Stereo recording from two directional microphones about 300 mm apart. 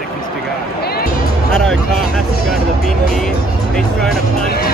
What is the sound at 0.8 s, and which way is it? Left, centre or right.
Music, left.